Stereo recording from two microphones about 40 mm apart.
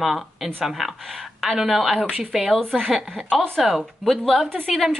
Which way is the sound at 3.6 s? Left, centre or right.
Centre.